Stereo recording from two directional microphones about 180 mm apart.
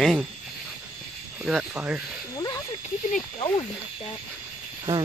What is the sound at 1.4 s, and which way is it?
Speech, 5° right (ahead or behind).